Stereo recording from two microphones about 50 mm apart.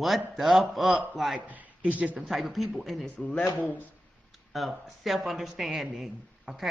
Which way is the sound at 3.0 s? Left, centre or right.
Left.